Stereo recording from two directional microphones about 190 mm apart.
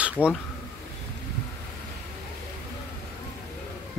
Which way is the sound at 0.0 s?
5° right (ahead or behind).